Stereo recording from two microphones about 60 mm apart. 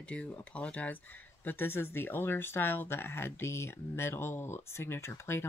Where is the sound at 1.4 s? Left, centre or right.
Left.